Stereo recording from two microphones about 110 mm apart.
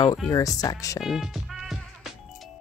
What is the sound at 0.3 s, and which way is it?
Speech, 30° left (ahead or behind).